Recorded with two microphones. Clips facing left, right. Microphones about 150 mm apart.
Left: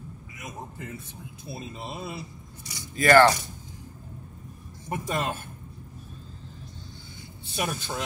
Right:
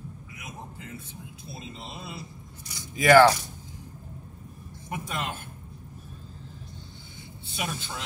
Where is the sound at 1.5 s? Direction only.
55° left (ahead or behind).